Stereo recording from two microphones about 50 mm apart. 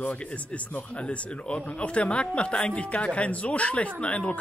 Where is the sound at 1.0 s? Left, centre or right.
Left.